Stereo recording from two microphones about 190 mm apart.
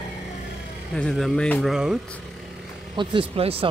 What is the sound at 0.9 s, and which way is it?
Speech, 5° left (ahead or behind).